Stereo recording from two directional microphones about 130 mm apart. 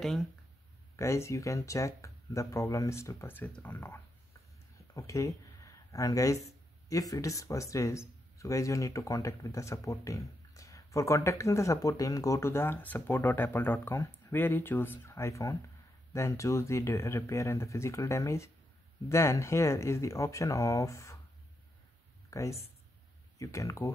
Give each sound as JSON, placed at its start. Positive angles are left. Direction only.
{"t": 0.0, "sound": "speech", "side_deg": 0}
{"t": 0.9, "sound": "speech", "side_deg": 20}
{"t": 4.7, "sound": "a sound", "side_deg": 25}
{"t": 6.9, "sound": "speech", "side_deg": 25}
{"t": 22.3, "sound": "speech", "side_deg": 25}